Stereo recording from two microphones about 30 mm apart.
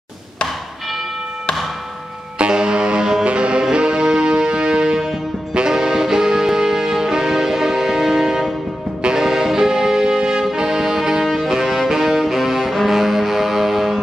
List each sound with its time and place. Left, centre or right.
2.3 s music: right; by 11.5 s centre
11.5 s music: centre